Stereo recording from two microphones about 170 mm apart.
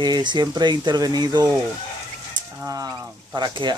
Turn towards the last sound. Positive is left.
turn(degrees=-25)  # may be behind; listen again after turning